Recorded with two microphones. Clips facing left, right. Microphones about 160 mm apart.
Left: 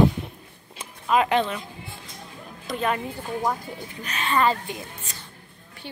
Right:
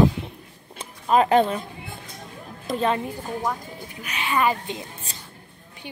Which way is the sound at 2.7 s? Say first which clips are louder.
Right 3 dB; 30° right (ahead or behind).